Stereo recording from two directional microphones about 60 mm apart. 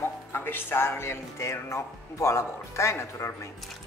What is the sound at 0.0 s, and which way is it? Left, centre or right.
Speech, left.